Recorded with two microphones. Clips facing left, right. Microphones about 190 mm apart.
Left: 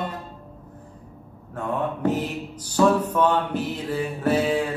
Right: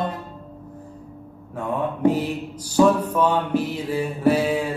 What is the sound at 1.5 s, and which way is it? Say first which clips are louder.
Mantra: right 1 dB; 10° right (ahead or behind).